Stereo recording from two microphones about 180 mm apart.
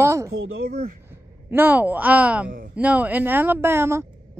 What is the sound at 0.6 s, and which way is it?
Speech, 55° right (ahead or behind).